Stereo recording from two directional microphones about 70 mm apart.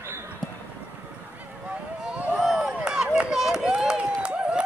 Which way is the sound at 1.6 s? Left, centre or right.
Centre.